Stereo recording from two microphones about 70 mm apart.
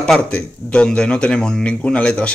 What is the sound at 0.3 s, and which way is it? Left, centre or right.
Speech, centre.